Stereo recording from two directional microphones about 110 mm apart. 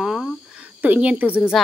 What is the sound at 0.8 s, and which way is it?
Speech, 15° right (ahead or behind).